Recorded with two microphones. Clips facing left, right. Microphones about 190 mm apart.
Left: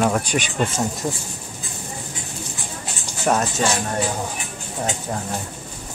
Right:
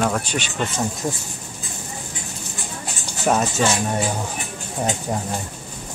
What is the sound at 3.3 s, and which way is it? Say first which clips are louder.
Speech: even; 5° right (ahead or behind).